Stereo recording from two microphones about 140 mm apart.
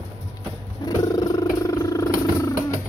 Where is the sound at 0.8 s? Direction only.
25° left (ahead or behind).